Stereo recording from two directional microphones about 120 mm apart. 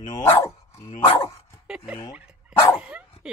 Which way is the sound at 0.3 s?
20° left (ahead or behind).